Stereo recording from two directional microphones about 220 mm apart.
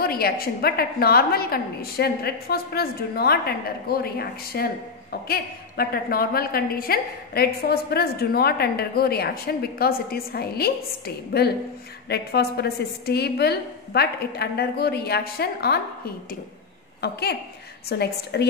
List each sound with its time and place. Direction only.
0.0 s a woman's voice: 45° left (ahead or behind)
17.0 s a woman's voice: 45° left (ahead or behind)